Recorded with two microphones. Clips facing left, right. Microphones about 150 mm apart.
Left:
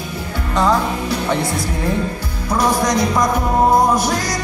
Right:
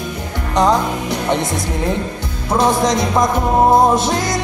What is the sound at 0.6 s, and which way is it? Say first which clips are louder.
Speech: right 2 dB; 20° right (ahead or behind).